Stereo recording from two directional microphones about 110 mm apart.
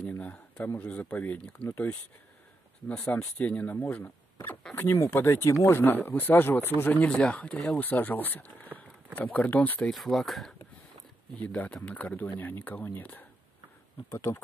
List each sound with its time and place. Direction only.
0.1 s a sound: 15° left (ahead or behind)
0.7 s speech: 15° left (ahead or behind)
9.8 s speech: centre (ahead or behind)
11.3 s speech: 15° left (ahead or behind)